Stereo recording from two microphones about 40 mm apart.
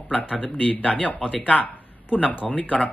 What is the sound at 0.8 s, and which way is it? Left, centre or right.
Speech, left.